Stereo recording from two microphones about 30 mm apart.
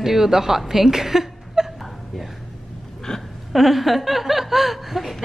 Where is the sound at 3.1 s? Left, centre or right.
Centre.